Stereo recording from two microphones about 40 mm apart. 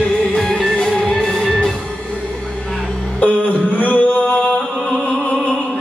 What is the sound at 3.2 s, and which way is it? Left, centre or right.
Mantra, left.